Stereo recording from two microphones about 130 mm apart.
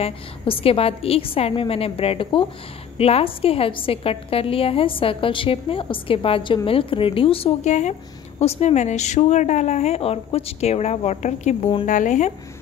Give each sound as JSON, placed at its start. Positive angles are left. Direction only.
{"t": 0.0, "sound": "a woman's voice", "side_deg": 45}
{"t": 11.8, "sound": "speech", "side_deg": 75}